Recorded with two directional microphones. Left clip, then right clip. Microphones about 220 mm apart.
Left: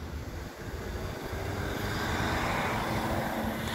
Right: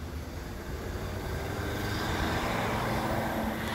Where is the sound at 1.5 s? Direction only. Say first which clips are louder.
Even; 25° left (ahead or behind); by 3.1 s 10° left (ahead or behind).